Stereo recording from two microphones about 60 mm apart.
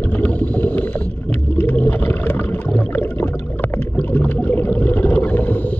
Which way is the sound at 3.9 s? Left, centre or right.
Left.